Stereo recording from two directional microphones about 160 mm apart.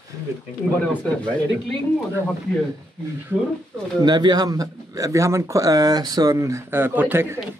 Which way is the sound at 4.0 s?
25° right (ahead or behind).